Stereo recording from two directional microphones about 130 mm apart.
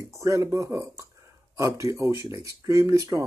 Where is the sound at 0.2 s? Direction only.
25° right (ahead or behind).